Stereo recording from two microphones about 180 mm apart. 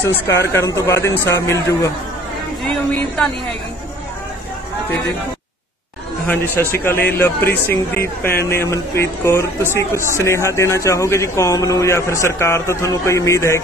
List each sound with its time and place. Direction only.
0.3 s speech: 15° left (ahead or behind)
6.2 s speech: 10° left (ahead or behind)